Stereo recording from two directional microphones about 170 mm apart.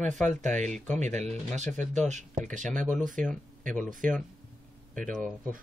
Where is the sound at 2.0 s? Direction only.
45° right (ahead or behind).